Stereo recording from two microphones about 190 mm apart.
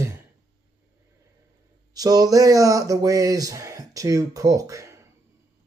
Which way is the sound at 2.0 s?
20° right (ahead or behind).